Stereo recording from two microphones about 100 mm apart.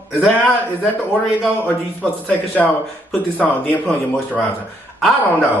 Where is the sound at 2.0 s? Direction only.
15° left (ahead or behind).